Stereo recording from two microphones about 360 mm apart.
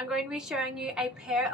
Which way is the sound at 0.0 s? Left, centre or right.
Centre.